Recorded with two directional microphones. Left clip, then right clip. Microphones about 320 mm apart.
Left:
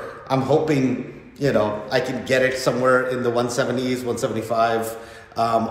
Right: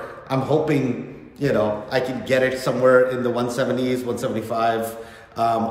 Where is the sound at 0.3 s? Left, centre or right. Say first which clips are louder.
Left 1 dB; centre.